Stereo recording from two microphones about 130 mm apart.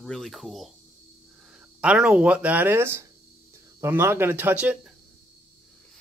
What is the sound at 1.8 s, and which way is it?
Speech, 10° right (ahead or behind).